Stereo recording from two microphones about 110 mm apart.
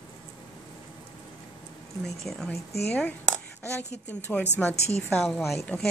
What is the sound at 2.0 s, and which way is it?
Speech, 5° left (ahead or behind).